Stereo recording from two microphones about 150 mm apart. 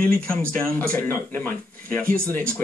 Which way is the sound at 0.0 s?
10° left (ahead or behind).